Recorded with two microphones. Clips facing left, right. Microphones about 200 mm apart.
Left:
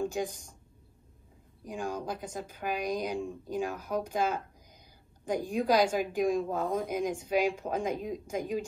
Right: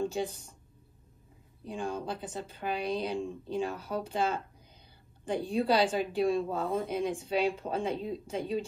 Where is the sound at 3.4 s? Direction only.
30° right (ahead or behind).